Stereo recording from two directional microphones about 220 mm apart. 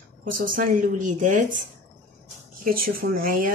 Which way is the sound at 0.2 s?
40° right (ahead or behind).